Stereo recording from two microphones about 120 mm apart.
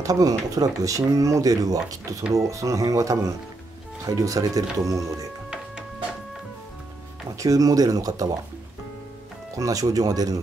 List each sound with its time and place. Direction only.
0.0 s speech: 30° right (ahead or behind)
7.3 s speech: 30° right (ahead or behind)
9.6 s speech: 30° right (ahead or behind)